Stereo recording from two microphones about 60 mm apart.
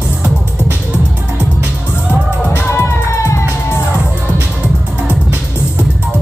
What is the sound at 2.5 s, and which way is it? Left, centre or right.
Music, left.